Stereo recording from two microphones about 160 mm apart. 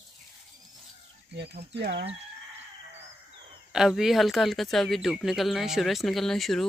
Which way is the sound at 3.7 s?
5° right (ahead or behind).